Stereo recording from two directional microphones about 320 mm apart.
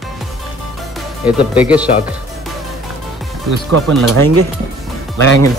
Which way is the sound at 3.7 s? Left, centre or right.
Right.